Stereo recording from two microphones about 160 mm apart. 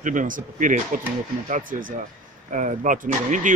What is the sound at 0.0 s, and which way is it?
Speech, 55° right (ahead or behind).